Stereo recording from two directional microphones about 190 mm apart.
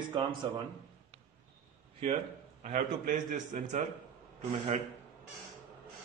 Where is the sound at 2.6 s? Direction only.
45° right (ahead or behind).